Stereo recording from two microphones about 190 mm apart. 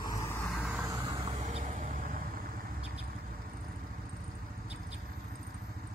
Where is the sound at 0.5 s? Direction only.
5° right (ahead or behind).